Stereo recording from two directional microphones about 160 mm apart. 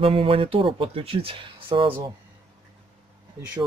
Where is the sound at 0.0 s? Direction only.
35° right (ahead or behind).